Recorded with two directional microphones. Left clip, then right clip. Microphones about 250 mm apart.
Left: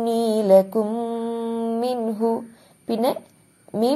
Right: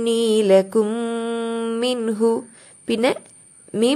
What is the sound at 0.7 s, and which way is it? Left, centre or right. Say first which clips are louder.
Mantra: right 3 dB; right.